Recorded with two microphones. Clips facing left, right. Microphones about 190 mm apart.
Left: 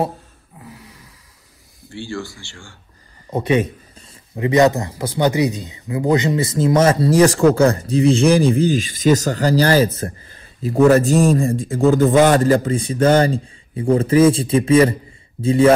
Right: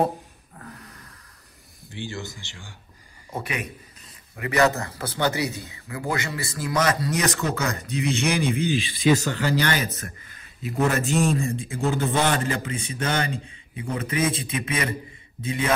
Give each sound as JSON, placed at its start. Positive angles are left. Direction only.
{"t": 0.6, "sound": "a sound", "side_deg": 5}
{"t": 1.9, "sound": "speech", "side_deg": -20}
{"t": 3.3, "sound": "a man's voice", "side_deg": 25}